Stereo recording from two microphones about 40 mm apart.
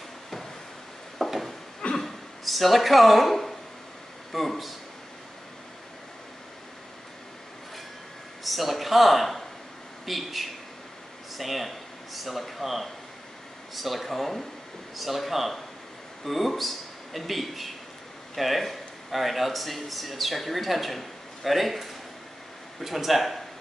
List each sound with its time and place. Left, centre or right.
1.1 s a sound: centre
4.3 s speech: centre
8.5 s speech: centre